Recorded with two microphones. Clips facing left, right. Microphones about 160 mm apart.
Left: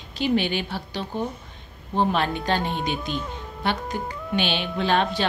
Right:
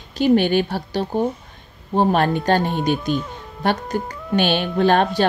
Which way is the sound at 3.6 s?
45° right (ahead or behind).